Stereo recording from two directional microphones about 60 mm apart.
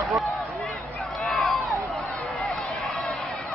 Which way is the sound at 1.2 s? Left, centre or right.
Centre.